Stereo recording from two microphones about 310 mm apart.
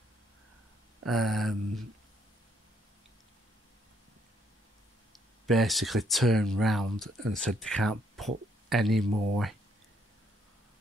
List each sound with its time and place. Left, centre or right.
1.0 s speech: centre
5.1 s speech: centre